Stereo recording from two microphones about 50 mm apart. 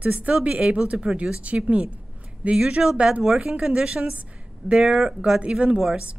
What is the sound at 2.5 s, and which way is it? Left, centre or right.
Speech, centre.